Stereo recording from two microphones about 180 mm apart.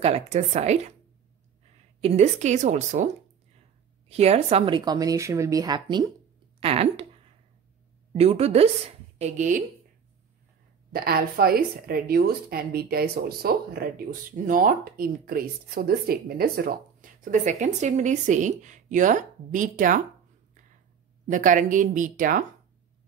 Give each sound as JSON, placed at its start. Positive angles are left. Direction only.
{"t": 0.0, "sound": "a woman's voice", "side_deg": -35}
{"t": 2.0, "sound": "a woman's voice", "side_deg": -35}
{"t": 4.1, "sound": "a woman's voice", "side_deg": -35}
{"t": 8.1, "sound": "a woman's voice", "side_deg": -35}
{"t": 10.9, "sound": "a woman's voice", "side_deg": -55}
{"t": 21.3, "sound": "a woman's voice", "side_deg": -45}